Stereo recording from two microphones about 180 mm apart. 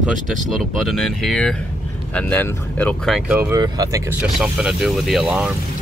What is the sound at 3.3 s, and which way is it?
Speech, 10° right (ahead or behind).